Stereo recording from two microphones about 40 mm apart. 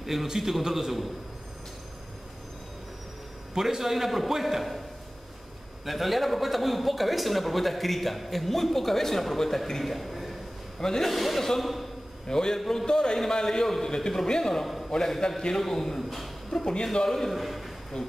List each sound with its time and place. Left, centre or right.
0.0 s a man's voice: centre
3.5 s speech: centre
5.9 s speech: centre
10.8 s a man's voice: centre
11.1 s a man's voice: centre
12.3 s a man's voice: centre
14.9 s a man's voice: centre
17.3 s a man's voice: centre
17.9 s speech: centre